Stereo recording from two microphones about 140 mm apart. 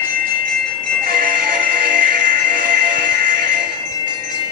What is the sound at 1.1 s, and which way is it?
Music, 85° right.